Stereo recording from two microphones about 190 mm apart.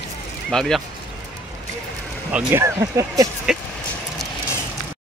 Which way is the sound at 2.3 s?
10° right (ahead or behind).